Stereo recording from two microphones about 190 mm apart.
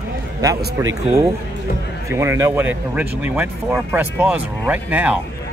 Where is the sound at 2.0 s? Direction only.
15° right (ahead or behind).